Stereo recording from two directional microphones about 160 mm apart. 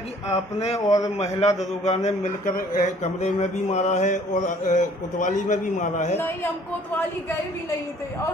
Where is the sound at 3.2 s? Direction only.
45° left (ahead or behind).